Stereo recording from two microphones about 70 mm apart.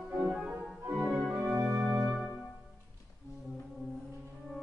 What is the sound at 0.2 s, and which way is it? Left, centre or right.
Music, centre.